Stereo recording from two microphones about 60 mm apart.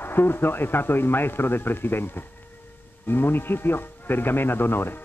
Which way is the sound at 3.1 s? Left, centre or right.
Left.